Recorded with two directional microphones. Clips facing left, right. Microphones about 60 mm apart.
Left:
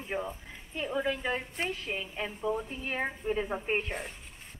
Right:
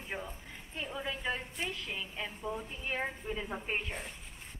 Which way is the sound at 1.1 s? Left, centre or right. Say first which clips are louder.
Left 5 dB; left.